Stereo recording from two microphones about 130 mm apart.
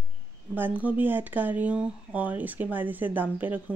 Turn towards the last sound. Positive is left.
turn(degrees=-15)  # may be behind; listen again after turning